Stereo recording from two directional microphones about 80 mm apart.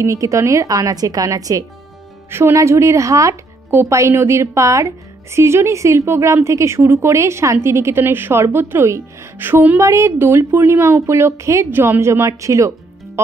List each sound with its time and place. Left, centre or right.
0.0 s a woman's voice: right
9.8 s speech: right